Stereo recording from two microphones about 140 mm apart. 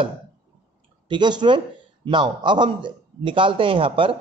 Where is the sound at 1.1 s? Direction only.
30° right (ahead or behind).